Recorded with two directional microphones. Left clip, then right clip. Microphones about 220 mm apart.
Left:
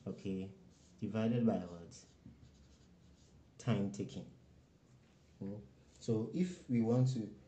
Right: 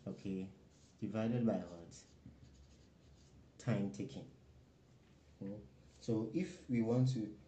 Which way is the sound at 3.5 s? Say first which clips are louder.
Left 2 dB; 15° left (ahead or behind).